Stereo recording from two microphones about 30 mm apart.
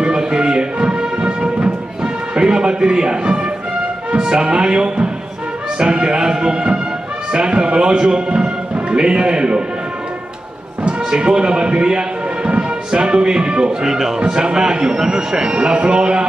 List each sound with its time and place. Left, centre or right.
0.1 s music: right
5.8 s a man's voice: right
11.1 s a man's voice: right
13.8 s speech: centre
14.3 s a man's voice: right